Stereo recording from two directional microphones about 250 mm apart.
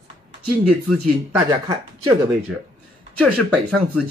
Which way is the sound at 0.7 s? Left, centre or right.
Centre.